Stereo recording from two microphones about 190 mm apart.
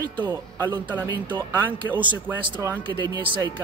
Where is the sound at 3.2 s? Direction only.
25° right (ahead or behind).